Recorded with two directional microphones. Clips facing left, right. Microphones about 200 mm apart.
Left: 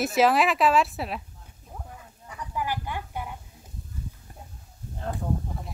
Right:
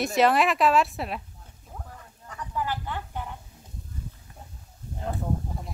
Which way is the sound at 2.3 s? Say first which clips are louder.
Even; 10° left (ahead or behind).